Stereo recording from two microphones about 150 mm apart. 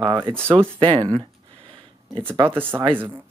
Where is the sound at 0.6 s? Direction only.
35° right (ahead or behind).